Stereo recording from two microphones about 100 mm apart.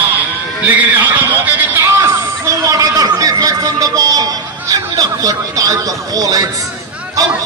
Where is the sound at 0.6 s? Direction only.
15° right (ahead or behind).